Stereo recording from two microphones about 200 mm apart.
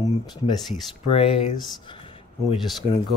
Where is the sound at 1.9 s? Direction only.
25° left (ahead or behind).